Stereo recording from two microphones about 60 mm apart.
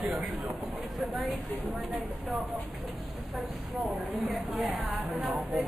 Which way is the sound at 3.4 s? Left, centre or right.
Centre.